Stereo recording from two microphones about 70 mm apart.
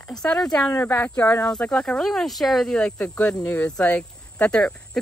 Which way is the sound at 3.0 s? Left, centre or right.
Centre.